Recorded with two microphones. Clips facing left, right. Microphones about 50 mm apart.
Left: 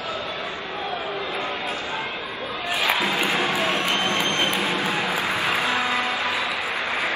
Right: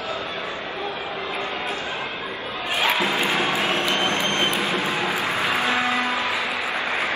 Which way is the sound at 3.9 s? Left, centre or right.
Right.